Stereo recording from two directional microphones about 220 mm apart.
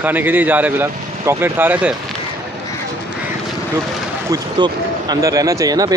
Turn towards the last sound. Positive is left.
turn(degrees=-15)  # may be behind; listen again after turning